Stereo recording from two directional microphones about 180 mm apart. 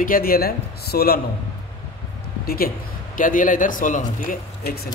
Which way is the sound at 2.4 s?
60° left (ahead or behind).